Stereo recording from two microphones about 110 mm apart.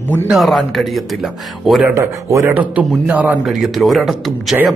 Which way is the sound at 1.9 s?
25° right (ahead or behind).